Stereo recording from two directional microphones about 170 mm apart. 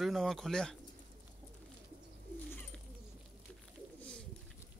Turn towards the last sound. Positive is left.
turn(degrees=5)  # may be behind; listen again after turning